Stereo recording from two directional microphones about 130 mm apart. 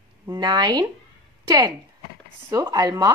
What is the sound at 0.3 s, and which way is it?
Speech, 35° right (ahead or behind).